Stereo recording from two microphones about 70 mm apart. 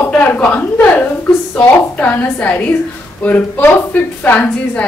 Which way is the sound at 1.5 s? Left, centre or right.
Left.